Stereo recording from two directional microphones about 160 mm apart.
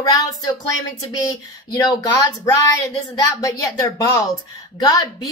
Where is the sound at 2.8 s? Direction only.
20° left (ahead or behind).